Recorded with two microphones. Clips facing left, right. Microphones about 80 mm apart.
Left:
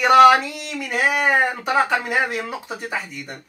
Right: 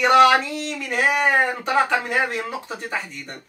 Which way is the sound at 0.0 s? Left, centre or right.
Centre.